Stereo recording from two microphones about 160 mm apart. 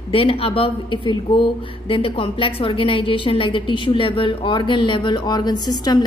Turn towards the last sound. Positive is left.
turn(degrees=25)  # may be behind; listen again after turning